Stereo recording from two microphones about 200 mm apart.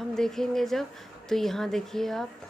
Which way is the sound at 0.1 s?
Centre (ahead or behind).